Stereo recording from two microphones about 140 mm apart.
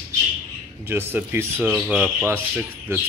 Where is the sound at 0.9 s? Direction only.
15° right (ahead or behind).